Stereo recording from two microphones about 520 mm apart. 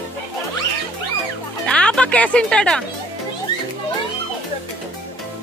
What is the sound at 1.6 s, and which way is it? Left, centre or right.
Music, centre.